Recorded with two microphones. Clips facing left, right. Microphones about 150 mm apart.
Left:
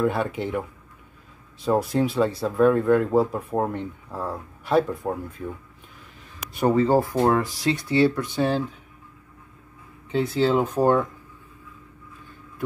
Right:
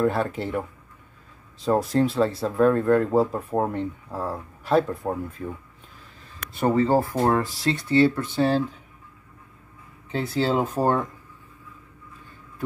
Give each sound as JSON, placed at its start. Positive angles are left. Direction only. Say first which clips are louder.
{"t": 0.0, "sound": "speech", "louder": "even", "side_deg": 0}
{"t": 1.7, "sound": "speech", "louder": "right 1 dB", "side_deg": 0}
{"t": 6.5, "sound": "speech", "louder": "left 1 dB", "side_deg": 15}
{"t": 7.1, "sound": "speech", "louder": "left 1 dB", "side_deg": 0}
{"t": 7.4, "sound": "speech", "louder": "left 1 dB", "side_deg": 15}
{"t": 10.1, "sound": "speech", "louder": "left 2 dB", "side_deg": -5}